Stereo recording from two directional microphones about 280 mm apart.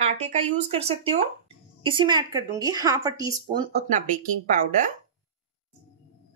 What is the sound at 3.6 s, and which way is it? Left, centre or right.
Speech, right.